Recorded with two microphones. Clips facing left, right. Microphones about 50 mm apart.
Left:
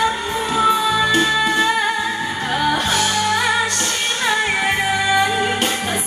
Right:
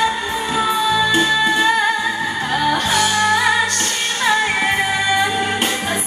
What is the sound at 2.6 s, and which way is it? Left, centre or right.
Music, centre.